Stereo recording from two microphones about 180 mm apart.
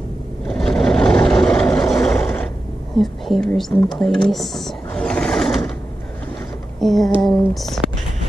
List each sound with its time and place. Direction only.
0.5 s vehicle: 5° left (ahead or behind)
3.0 s speech: centre (ahead or behind)
6.8 s a sound: centre (ahead or behind)